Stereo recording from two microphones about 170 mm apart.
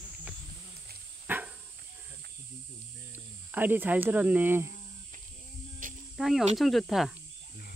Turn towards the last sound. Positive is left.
turn(degrees=0)  # may be behind; listen again after turning